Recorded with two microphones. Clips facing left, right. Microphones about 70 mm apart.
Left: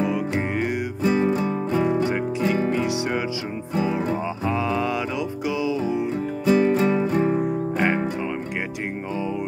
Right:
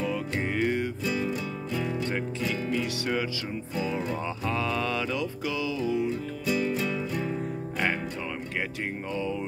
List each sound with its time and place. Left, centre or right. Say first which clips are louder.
0.0 s music: left 6 dB; centre
1.0 s music: left 9 dB; left
4.5 s mantra: left 5 dB; centre
5.6 s music: left 3 dB; left
6.4 s music: left 10 dB; left
7.3 s music: left 9 dB; left